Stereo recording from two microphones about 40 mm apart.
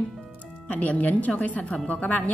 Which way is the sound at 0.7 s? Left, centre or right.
Left.